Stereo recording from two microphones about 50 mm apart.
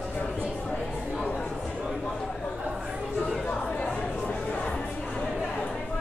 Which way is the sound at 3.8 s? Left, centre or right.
Left.